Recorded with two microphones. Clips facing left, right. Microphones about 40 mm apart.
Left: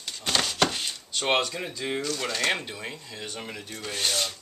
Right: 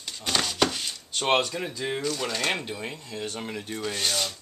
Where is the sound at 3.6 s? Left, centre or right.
Centre.